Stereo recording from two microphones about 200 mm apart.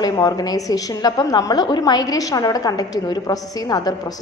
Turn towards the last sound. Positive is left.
turn(degrees=20)  # may be behind; listen again after turning